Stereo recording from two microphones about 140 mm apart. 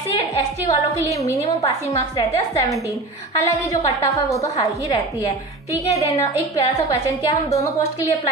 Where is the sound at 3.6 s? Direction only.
20° left (ahead or behind).